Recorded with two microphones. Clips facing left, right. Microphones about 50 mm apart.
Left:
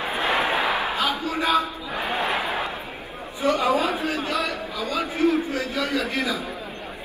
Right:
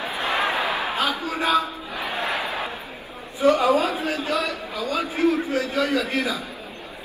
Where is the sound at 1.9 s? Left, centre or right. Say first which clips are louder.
Left 2 dB; left.